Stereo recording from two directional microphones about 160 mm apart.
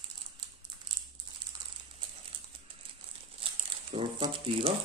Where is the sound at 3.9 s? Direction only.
35° right (ahead or behind).